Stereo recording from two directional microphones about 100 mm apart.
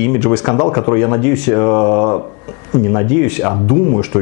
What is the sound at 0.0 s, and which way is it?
Speech, 10° left (ahead or behind).